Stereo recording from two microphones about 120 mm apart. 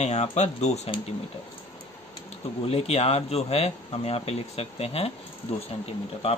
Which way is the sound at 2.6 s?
55° left (ahead or behind).